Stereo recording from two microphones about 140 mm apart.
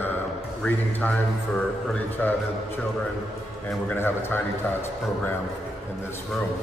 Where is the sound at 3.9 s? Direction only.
15° left (ahead or behind).